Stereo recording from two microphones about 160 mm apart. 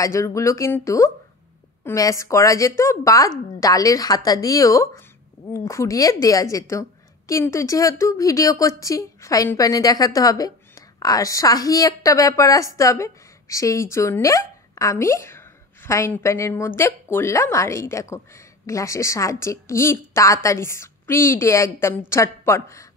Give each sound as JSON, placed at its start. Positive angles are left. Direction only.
{"t": 0.0, "sound": "a woman's voice", "side_deg": 20}